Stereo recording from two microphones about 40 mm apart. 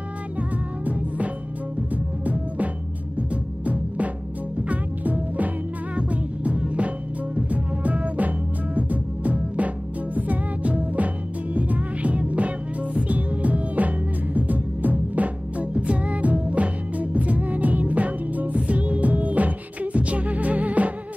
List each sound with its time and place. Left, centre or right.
0.4 s music: right